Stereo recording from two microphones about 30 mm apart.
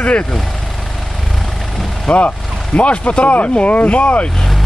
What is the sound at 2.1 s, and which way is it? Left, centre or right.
Speech, left.